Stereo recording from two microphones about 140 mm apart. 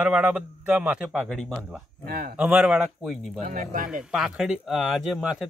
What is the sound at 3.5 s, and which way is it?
Speech, 75° right (ahead or behind).